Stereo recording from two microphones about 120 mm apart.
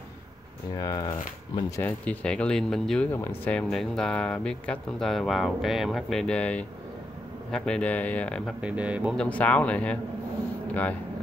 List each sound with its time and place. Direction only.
0.7 s speech: 30° left (ahead or behind)
1.8 s speech: 15° left (ahead or behind)
3.1 s speech: 15° left (ahead or behind)
3.5 s speech: 5° left (ahead or behind)
8.5 s speech: 10° right (ahead or behind)
9.1 s speech: 10° left (ahead or behind)